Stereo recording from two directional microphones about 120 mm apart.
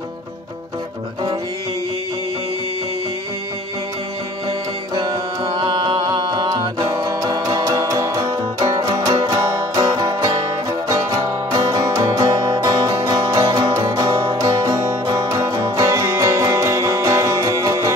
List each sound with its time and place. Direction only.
4.9 s music: 30° right (ahead or behind)